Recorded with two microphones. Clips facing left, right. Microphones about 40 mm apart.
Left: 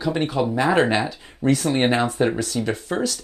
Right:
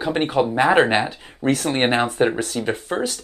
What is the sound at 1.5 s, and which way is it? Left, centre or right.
Speech, right.